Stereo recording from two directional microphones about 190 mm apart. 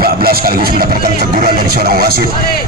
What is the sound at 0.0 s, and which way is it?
A man's voice, 50° right (ahead or behind).